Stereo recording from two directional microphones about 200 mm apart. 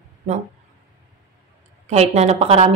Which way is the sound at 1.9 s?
35° right (ahead or behind).